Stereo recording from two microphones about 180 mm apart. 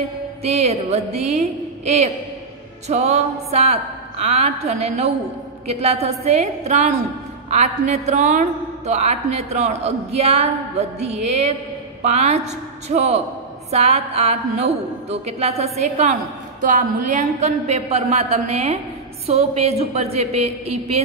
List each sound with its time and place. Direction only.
0.4 s a woman's voice: 35° right (ahead or behind)